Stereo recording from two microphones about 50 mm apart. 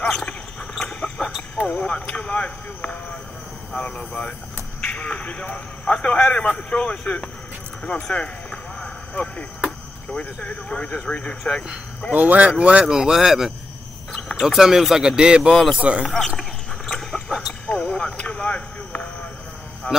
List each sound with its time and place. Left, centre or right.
0.1 s basketball bounce: centre
1.8 s a man's voice: left
8.5 s a sound: centre
9.1 s speech: left
12.1 s speech: right
12.4 s speech: right
16.2 s a sound: centre
17.7 s a sound: centre
19.9 s a man's voice: left